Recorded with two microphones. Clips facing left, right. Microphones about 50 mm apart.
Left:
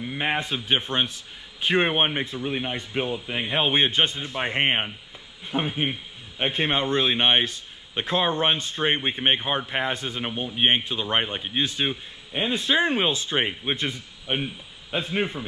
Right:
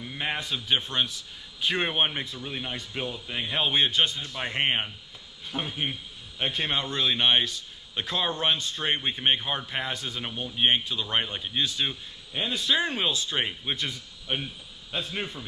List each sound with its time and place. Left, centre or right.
0.0 s a man's voice: left